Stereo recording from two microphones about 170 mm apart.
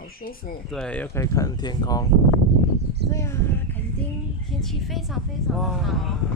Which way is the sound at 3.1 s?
15° left (ahead or behind).